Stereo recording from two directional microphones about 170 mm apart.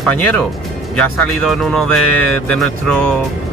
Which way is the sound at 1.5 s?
Centre (ahead or behind).